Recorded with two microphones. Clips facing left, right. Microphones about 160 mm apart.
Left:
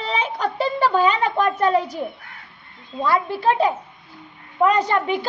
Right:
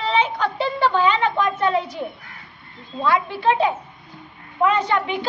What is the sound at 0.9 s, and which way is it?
Speech, 40° left (ahead or behind).